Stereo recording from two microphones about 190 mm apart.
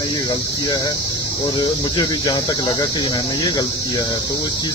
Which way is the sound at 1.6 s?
20° left (ahead or behind).